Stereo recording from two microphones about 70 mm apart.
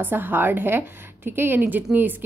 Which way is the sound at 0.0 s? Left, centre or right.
Right.